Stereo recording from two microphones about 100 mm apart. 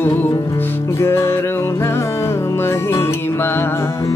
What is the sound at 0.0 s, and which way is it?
Music, 20° left (ahead or behind).